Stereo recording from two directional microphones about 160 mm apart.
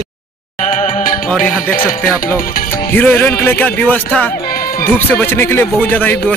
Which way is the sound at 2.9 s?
10° left (ahead or behind).